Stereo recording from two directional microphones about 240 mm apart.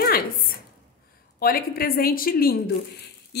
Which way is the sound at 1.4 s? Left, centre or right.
Left.